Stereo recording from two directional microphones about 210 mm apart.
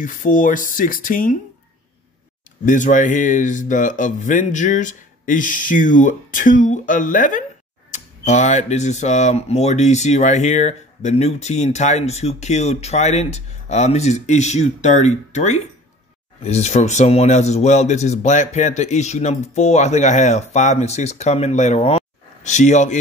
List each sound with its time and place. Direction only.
0.0 s speech: 40° left (ahead or behind)
2.6 s speech: 35° left (ahead or behind)